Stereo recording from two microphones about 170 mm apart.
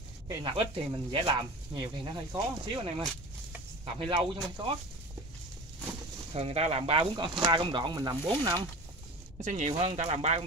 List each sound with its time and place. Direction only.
0.3 s speech: 30° right (ahead or behind)
4.0 s speech: 30° right (ahead or behind)
6.3 s speech: 40° right (ahead or behind)
9.4 s speech: 45° right (ahead or behind)